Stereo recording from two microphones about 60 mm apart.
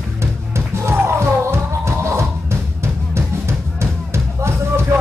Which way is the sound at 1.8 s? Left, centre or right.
Right.